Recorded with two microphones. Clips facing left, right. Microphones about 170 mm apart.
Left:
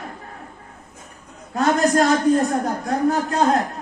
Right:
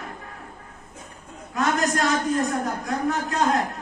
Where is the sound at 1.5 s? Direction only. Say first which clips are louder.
Left 6 dB; 35° left (ahead or behind).